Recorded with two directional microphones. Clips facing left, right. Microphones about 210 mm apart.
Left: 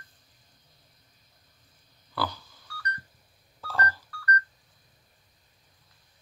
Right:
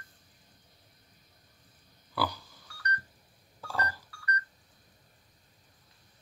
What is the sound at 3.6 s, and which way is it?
Telephone dialing, 10° right (ahead or behind).